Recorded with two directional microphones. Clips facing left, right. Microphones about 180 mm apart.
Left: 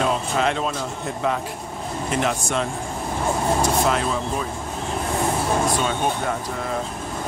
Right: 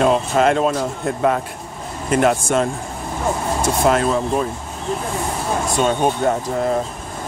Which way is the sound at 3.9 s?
50° right (ahead or behind).